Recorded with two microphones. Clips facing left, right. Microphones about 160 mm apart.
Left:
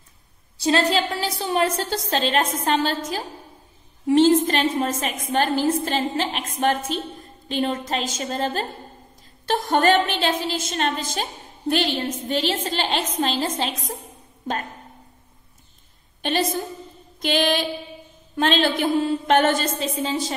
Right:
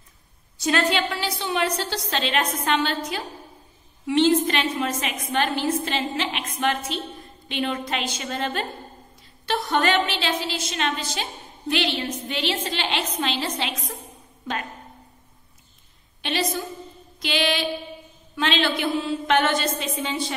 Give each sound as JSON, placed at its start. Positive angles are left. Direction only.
{"t": 0.6, "sound": "a woman's voice", "side_deg": 30}
{"t": 9.5, "sound": "a woman's voice", "side_deg": 50}
{"t": 16.2, "sound": "a woman's voice", "side_deg": 45}